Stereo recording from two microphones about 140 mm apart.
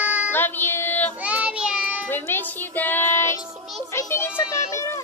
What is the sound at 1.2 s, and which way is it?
Child singing, 10° right (ahead or behind).